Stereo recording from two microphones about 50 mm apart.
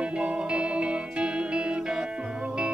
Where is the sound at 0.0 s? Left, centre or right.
Right.